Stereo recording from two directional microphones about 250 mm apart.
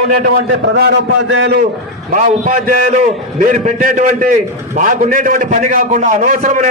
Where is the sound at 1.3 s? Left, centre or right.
Right.